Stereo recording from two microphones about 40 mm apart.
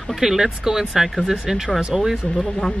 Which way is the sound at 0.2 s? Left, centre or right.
Centre.